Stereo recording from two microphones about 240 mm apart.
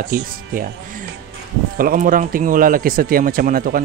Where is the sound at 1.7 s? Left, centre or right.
Right.